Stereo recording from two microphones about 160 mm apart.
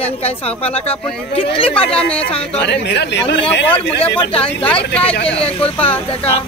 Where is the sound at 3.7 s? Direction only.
35° left (ahead or behind).